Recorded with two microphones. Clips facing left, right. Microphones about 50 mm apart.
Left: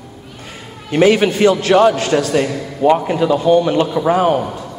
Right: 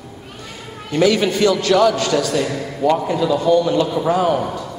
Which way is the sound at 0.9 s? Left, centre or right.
Left.